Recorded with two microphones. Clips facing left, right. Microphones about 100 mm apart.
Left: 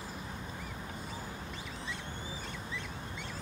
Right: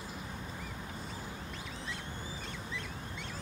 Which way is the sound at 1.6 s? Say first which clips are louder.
Left 1 dB; centre (ahead or behind).